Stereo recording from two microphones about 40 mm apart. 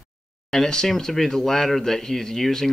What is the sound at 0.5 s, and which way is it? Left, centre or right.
Speech, centre.